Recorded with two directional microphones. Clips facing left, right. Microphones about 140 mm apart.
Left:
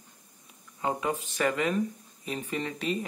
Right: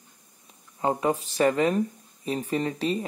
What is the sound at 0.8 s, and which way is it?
Speech, 35° right (ahead or behind).